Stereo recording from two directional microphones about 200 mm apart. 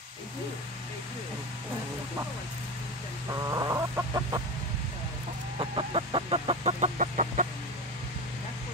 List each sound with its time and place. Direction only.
3.3 s chicken: 15° right (ahead or behind)
5.6 s chicken: 25° right (ahead or behind)